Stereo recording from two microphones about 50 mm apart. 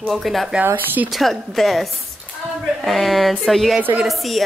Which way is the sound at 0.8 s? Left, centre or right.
Right.